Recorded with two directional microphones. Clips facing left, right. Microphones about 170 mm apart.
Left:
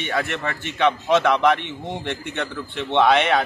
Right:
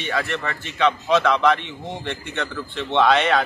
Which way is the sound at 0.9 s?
20° left (ahead or behind).